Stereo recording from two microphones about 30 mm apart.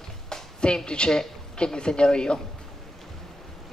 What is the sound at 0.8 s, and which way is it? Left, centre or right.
A man's voice, left.